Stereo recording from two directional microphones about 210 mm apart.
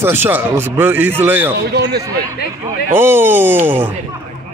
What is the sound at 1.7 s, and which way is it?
Speech, 50° right (ahead or behind).